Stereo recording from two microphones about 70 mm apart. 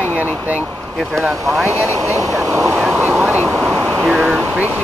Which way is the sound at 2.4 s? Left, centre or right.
Right.